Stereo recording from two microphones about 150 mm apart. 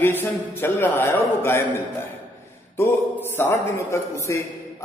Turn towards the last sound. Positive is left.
turn(degrees=20)  # may be behind; listen again after turning